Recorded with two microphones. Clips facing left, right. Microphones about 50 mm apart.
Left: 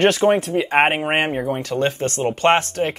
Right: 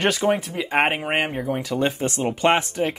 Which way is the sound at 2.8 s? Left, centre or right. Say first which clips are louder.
Left 2 dB; centre.